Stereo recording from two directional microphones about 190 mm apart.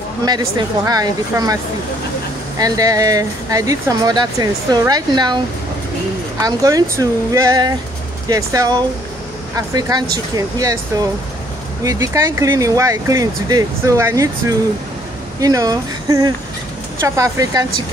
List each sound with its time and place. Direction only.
0.2 s speech: 20° right (ahead or behind)
2.6 s speech: 20° right (ahead or behind)
6.4 s speech: 15° right (ahead or behind)
11.8 s speech: 15° right (ahead or behind)
15.4 s speech: 20° right (ahead or behind)